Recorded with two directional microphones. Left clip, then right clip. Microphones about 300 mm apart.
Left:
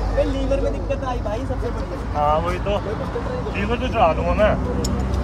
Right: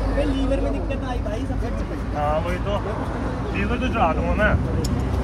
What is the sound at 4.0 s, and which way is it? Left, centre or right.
Speech, left.